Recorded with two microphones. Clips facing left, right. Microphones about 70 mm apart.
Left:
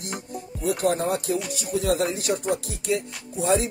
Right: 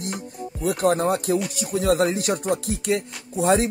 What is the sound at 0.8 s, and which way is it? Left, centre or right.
Speech, right.